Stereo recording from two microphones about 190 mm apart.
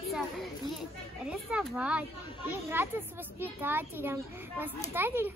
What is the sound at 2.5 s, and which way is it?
Speech, 10° right (ahead or behind).